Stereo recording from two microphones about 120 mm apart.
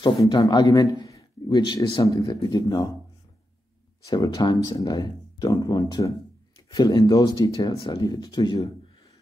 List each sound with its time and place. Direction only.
0.2 s a man's voice: 35° left (ahead or behind)
4.0 s speech: 30° left (ahead or behind)